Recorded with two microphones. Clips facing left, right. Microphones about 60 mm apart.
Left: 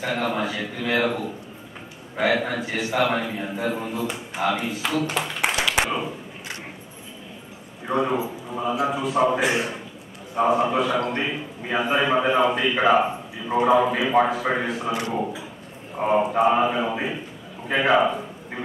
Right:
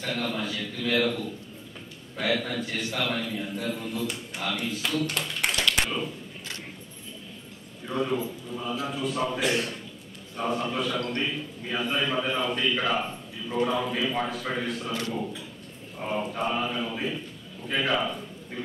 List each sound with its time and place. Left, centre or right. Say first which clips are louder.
0.0 s a man's voice: left 6 dB; left
7.8 s a man's voice: left 5 dB; left
17.6 s a sound: left 8 dB; left